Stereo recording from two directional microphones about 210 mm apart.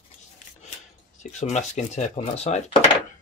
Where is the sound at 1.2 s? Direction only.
35° left (ahead or behind).